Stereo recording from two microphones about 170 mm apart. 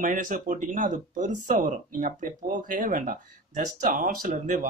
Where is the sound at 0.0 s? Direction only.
50° right (ahead or behind).